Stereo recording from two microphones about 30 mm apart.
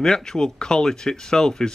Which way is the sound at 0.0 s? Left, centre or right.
Left.